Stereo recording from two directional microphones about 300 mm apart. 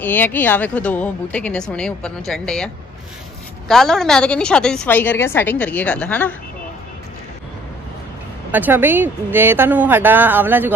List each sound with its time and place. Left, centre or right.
0.0 s a woman's voice: centre
8.5 s speech: centre